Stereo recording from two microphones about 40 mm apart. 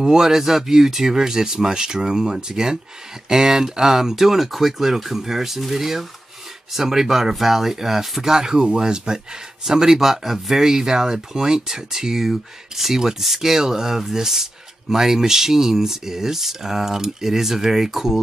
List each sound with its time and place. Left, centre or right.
0.0 s speech: centre